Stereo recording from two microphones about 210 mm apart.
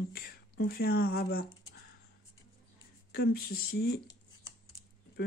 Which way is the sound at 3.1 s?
50° left (ahead or behind).